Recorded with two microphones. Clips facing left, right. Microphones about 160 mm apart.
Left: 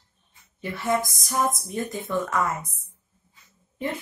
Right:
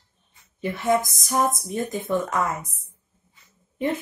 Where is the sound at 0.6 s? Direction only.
20° right (ahead or behind).